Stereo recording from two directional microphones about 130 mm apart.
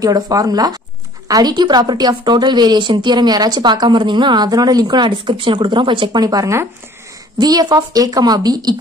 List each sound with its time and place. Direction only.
0.0 s a woman's voice: 30° right (ahead or behind)